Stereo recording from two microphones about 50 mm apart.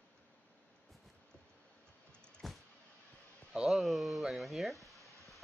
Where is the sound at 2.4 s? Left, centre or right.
Centre.